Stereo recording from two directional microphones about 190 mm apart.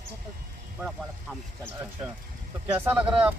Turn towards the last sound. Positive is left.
turn(degrees=-10)  # may be behind; listen again after turning